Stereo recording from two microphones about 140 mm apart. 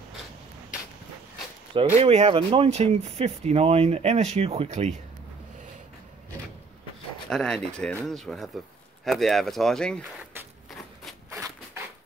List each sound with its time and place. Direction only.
2.0 s speech: 50° right (ahead or behind)
7.2 s speech: 5° left (ahead or behind)
11.2 s a sound: 20° right (ahead or behind)